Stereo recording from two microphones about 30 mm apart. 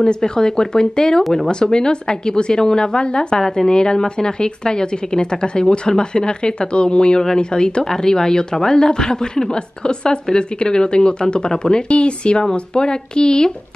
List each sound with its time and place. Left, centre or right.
0.0 s speech: left
3.4 s a woman's voice: centre
3.7 s speech: left